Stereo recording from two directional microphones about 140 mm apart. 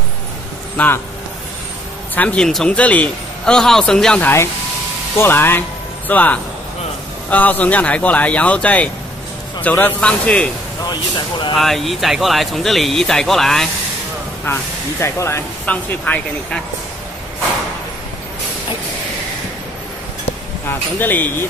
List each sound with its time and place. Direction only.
0.7 s speech: 15° left (ahead or behind)
2.1 s speech: 5° left (ahead or behind)
5.1 s speech: 15° left (ahead or behind)
10.9 s speech: 35° left (ahead or behind)
11.5 s speech: centre (ahead or behind)
14.4 s speech: 15° left (ahead or behind)
21.0 s speech: 15° left (ahead or behind)